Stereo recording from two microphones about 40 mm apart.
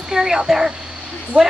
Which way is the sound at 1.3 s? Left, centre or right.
Right.